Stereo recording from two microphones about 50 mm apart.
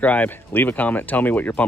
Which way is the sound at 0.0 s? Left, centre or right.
Left.